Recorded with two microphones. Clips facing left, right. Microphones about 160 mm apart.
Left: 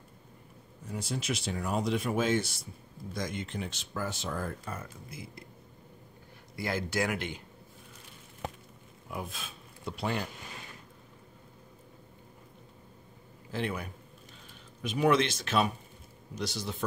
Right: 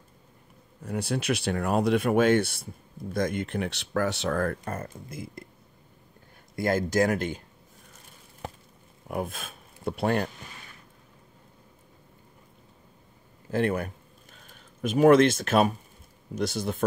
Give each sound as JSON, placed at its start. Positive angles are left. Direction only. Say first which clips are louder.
{"t": 0.8, "sound": "speech", "louder": "right 7 dB", "side_deg": -65}
{"t": 4.7, "sound": "speech", "louder": "right 7 dB", "side_deg": -45}
{"t": 6.5, "sound": "speech", "louder": "right 8 dB", "side_deg": -45}
{"t": 9.1, "sound": "speech", "louder": "right 8 dB", "side_deg": -55}
{"t": 13.5, "sound": "speech", "louder": "right 8 dB", "side_deg": -50}